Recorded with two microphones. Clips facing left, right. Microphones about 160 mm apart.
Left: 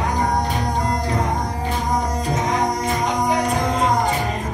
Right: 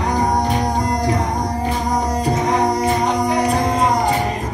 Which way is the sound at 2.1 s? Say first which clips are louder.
Right 4 dB; 35° right (ahead or behind).